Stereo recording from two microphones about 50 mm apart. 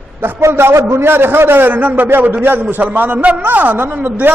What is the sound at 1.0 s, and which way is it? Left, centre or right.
A man's voice, right.